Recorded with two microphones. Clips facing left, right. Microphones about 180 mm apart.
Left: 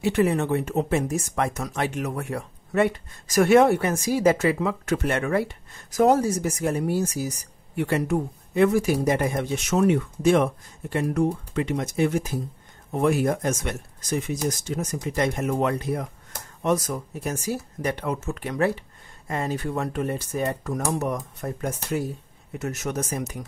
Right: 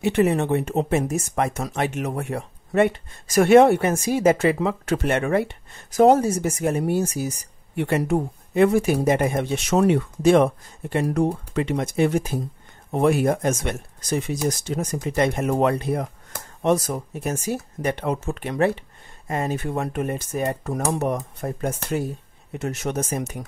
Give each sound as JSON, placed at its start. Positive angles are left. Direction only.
{"t": 0.0, "sound": "speech", "side_deg": -25}